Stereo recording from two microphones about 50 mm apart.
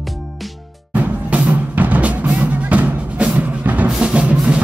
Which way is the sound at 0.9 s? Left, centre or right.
Right.